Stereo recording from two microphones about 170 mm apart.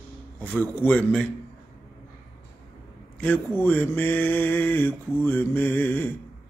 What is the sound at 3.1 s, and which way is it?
Mantra, 10° left (ahead or behind).